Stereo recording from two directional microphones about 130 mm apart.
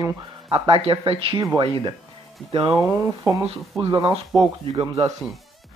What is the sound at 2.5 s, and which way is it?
Speech, 45° right (ahead or behind).